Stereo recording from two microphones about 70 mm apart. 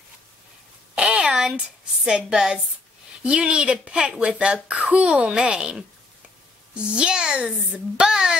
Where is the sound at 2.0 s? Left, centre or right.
Centre.